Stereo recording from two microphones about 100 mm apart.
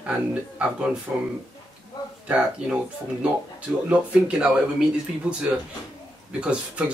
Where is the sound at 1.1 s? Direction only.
15° right (ahead or behind).